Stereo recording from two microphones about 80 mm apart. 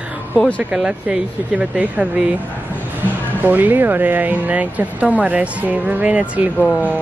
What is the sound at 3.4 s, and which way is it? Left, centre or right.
Speech, right.